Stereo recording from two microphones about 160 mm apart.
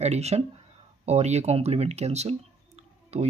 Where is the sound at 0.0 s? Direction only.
40° right (ahead or behind).